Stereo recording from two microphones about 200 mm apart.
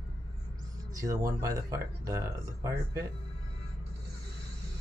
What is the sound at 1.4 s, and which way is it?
Speech, 15° right (ahead or behind).